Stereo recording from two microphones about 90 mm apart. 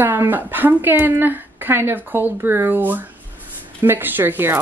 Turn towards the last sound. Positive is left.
turn(degrees=-25)  # may be behind; listen again after turning